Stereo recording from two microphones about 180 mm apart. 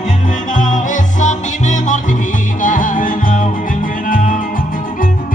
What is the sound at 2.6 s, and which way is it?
Music, 45° left (ahead or behind).